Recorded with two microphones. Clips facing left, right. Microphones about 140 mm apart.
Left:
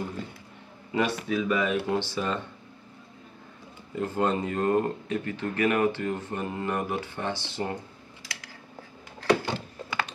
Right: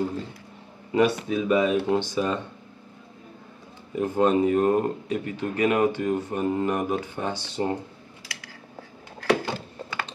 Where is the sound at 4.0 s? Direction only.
15° right (ahead or behind).